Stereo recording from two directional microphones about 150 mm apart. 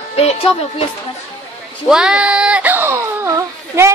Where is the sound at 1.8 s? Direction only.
5° right (ahead or behind).